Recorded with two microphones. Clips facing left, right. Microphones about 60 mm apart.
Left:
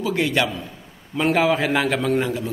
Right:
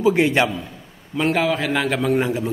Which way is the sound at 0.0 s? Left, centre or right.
Right.